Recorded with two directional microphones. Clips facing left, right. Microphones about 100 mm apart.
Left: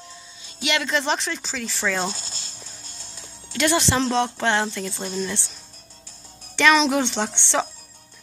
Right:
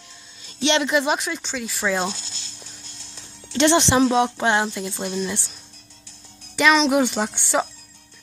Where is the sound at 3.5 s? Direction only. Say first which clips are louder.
Right 4 dB; 25° right (ahead or behind).